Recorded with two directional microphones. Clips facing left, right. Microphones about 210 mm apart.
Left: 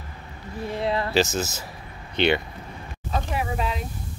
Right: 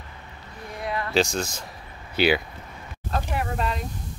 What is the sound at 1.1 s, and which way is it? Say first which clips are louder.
Speech: left 1 dB; 5° left (ahead or behind).